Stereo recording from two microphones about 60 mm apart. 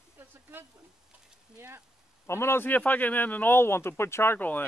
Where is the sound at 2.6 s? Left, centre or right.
Left.